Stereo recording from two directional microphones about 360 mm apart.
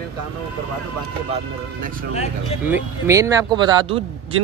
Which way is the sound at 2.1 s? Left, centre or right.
Centre.